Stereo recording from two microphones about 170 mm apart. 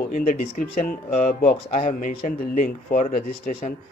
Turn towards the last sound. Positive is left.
turn(degrees=50)  # may be behind; listen again after turning